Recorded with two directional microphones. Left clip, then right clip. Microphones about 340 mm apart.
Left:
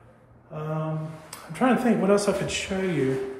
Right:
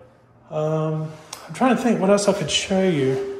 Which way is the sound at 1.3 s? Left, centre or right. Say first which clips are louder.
Right 3 dB; centre.